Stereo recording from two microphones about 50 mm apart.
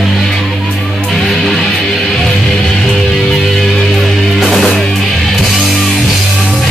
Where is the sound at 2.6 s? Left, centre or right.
Centre.